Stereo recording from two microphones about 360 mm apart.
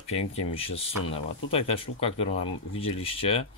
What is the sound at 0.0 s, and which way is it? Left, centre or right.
Speech, centre.